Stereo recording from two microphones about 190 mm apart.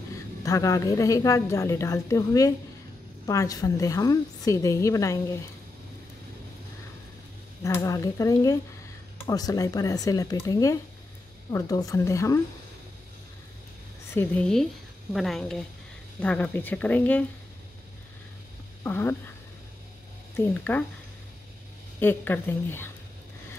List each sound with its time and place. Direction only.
0.4 s a woman's voice: 15° left (ahead or behind)
7.6 s a woman's voice: 15° left (ahead or behind)
14.1 s a woman's voice: 5° left (ahead or behind)
18.9 s a woman's voice: 10° left (ahead or behind)
20.3 s a woman's voice: 10° left (ahead or behind)
22.0 s a woman's voice: 10° left (ahead or behind)